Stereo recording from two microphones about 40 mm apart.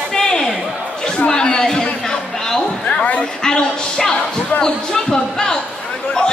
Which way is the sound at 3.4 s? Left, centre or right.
Centre.